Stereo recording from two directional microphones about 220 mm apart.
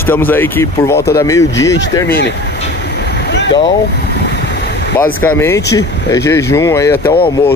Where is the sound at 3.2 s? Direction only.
50° left (ahead or behind).